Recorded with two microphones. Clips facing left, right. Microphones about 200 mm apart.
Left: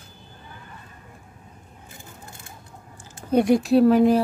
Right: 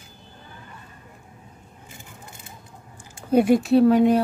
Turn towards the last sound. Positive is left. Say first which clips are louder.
# even
turn(degrees=0)  # may be behind; listen again after turning